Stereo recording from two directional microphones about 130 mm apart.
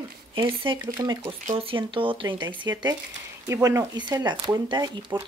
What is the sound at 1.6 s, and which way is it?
Speech, 40° right (ahead or behind).